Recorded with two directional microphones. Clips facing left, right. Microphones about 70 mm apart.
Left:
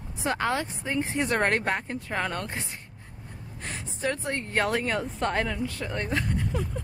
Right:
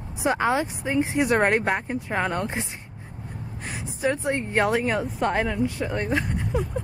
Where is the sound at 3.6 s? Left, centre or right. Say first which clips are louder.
Right 4 dB; centre.